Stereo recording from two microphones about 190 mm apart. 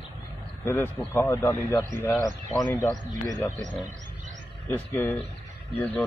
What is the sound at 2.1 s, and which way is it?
Speech, centre (ahead or behind).